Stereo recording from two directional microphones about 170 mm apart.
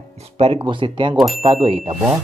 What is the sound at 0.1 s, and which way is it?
Speech, 35° right (ahead or behind).